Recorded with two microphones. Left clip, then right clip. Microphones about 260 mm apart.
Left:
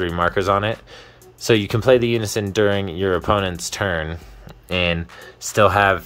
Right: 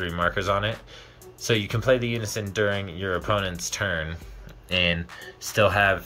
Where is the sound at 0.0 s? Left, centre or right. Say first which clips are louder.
Left 6 dB; left.